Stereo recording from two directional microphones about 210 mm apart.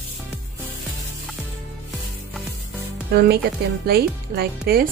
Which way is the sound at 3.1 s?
50° right (ahead or behind).